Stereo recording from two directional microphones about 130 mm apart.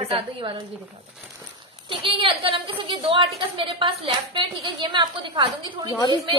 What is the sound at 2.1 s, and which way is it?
A woman's voice, 40° right (ahead or behind).